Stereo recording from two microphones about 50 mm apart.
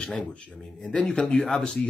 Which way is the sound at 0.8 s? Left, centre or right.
Left.